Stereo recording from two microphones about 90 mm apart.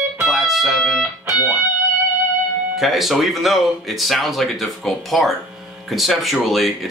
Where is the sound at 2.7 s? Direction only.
Centre (ahead or behind).